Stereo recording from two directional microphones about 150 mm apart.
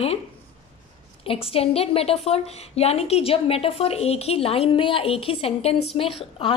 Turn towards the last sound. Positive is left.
turn(degrees=40)  # may be behind; listen again after turning